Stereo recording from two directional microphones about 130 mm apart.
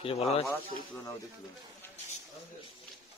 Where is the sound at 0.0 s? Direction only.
50° left (ahead or behind).